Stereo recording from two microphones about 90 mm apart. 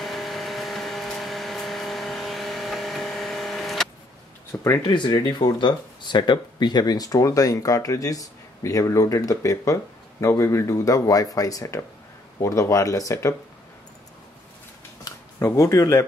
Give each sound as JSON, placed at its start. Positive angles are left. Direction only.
{"t": 0.0, "sound": "vehicle", "side_deg": 0}
{"t": 4.5, "sound": "speech", "side_deg": 30}
{"t": 4.8, "sound": "speech", "side_deg": 55}
{"t": 15.3, "sound": "speech", "side_deg": 35}